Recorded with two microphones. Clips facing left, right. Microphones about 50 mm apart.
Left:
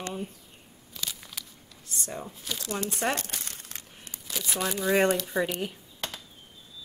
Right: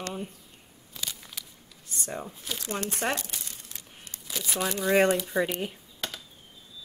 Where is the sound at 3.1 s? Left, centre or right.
Left.